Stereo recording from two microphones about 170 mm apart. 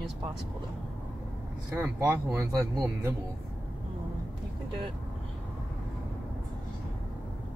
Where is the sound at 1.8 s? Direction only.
15° right (ahead or behind).